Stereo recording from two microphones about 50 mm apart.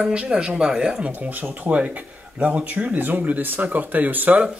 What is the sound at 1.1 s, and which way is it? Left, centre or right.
Speech, right.